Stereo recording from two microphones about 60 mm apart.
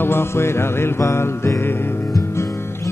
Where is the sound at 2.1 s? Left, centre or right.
Left.